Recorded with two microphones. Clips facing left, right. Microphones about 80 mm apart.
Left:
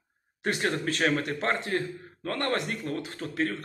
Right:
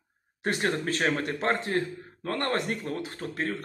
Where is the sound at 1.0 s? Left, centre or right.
Centre.